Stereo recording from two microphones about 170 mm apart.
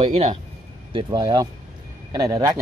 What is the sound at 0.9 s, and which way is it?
Speech, 25° right (ahead or behind).